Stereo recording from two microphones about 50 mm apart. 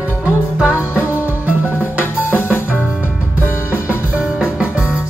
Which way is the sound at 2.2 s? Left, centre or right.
Left.